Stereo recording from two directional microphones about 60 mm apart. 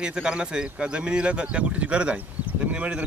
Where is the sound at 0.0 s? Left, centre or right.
Centre.